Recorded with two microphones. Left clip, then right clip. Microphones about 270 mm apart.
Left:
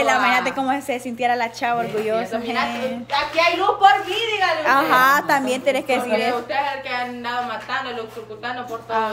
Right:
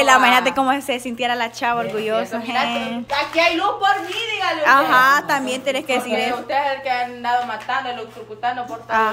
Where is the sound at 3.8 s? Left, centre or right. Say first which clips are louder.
Left 4 dB; centre.